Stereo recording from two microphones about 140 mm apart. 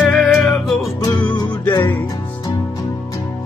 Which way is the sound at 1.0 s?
30° left (ahead or behind).